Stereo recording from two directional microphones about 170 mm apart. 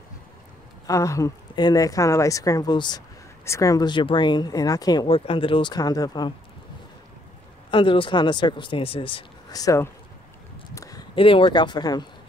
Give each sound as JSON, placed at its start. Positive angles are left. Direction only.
{"t": 0.8, "sound": "speech", "side_deg": 20}
{"t": 7.7, "sound": "speech", "side_deg": 30}
{"t": 10.7, "sound": "a sound", "side_deg": 20}
{"t": 11.1, "sound": "speech", "side_deg": 30}